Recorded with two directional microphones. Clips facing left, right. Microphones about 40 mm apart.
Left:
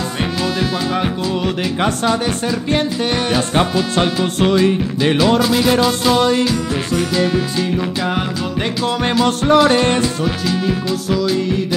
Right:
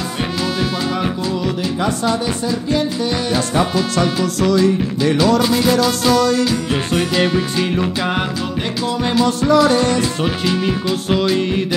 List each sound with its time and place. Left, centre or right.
3.9 s music: left
9.0 s music: left